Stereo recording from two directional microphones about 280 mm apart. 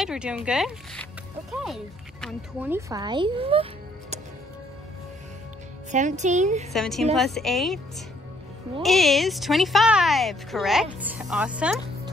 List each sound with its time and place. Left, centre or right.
0.0 s speech: centre
5.9 s a woman's voice: right
6.7 s speech: centre
8.8 s speech: centre